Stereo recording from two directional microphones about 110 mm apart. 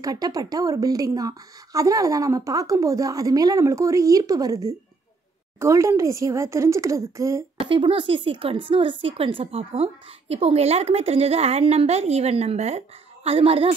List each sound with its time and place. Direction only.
0.0 s a woman's voice: 35° right (ahead or behind)
7.6 s speech: 55° right (ahead or behind)